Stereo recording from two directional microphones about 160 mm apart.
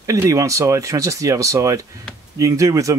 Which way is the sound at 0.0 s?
20° right (ahead or behind).